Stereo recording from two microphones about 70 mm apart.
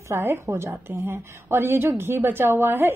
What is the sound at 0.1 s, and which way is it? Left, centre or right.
A woman's voice, right.